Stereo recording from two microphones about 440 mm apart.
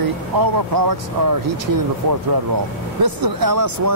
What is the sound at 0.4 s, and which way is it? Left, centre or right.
Speech, right.